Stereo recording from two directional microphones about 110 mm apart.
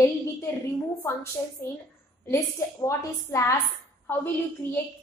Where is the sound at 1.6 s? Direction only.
20° left (ahead or behind).